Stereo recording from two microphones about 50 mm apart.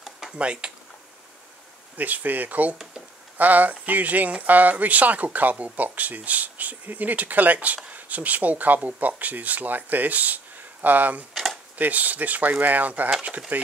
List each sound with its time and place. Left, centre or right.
0.4 s speech: right
2.0 s speech: right